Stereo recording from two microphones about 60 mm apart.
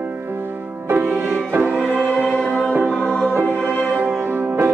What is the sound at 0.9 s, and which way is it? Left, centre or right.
Music, right.